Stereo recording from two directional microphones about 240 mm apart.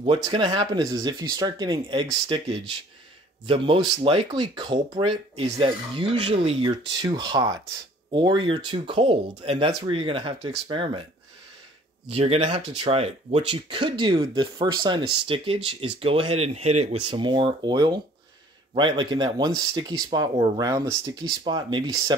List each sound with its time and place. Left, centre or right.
0.0 s speech: right
12.1 s speech: right